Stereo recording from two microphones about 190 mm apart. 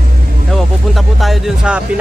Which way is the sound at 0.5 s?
Centre (ahead or behind).